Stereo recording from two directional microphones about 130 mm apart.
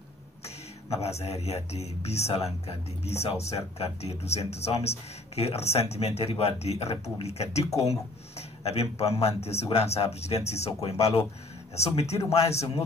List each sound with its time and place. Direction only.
1.0 s speech: 55° left (ahead or behind)